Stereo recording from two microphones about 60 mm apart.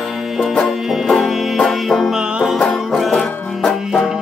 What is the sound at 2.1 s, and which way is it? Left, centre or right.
Music, centre.